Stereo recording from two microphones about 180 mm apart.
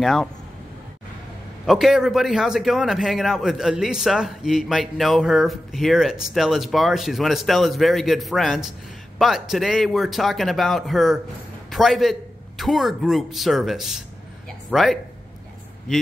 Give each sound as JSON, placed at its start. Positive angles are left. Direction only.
{"t": 0.0, "sound": "a man's voice", "side_deg": 0}
{"t": 1.7, "sound": "a man's voice", "side_deg": 0}